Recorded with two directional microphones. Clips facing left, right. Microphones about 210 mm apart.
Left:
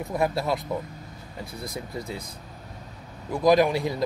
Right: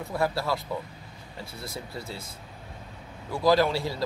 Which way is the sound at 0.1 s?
20° left (ahead or behind).